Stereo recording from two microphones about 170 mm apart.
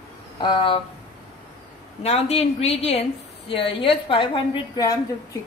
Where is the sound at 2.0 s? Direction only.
40° left (ahead or behind); by 5.4 s 20° left (ahead or behind).